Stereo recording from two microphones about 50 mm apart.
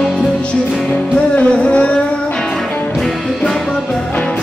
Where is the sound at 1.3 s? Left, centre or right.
Left.